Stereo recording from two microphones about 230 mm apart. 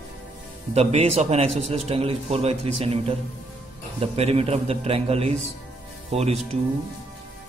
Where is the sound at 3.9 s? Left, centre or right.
Right.